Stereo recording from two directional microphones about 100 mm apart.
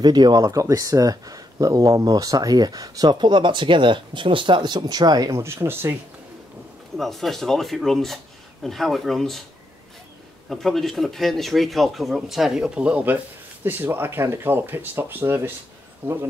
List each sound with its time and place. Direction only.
0.0 s speech: 45° right (ahead or behind)
5.4 s speech: 25° right (ahead or behind)
7.0 s speech: centre (ahead or behind)
10.5 s speech: centre (ahead or behind); by 16.2 s 20° right (ahead or behind)